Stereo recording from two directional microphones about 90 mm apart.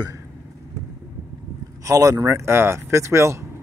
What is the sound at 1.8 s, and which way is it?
Speech, 40° right (ahead or behind).